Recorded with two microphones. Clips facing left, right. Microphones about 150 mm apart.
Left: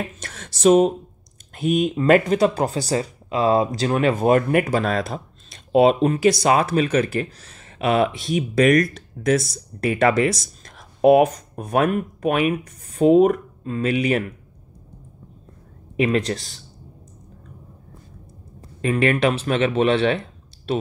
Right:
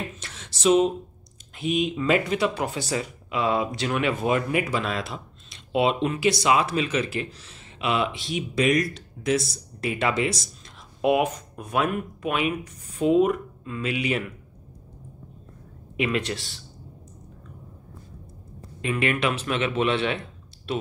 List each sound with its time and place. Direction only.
0.2 s a sound: 50° left (ahead or behind)
1.5 s speech: 50° left (ahead or behind)
16.0 s speech: 35° left (ahead or behind)
18.8 s speech: 40° left (ahead or behind)